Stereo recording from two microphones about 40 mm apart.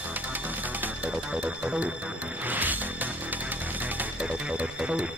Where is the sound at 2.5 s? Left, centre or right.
Right.